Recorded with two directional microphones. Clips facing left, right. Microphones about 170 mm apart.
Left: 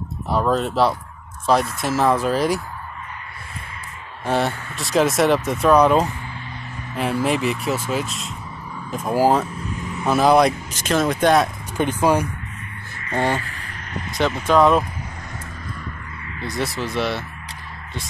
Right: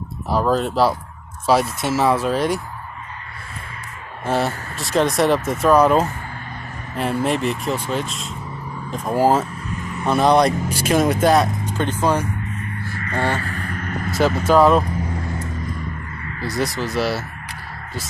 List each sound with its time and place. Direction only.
0.3 s speech: centre (ahead or behind)
4.3 s speech: centre (ahead or behind)
10.7 s speech: 10° right (ahead or behind)
11.7 s speech: 10° left (ahead or behind)
13.1 s vehicle: 15° left (ahead or behind)
13.4 s vehicle: 45° right (ahead or behind)
14.4 s speech: 5° right (ahead or behind)
16.4 s speech: centre (ahead or behind)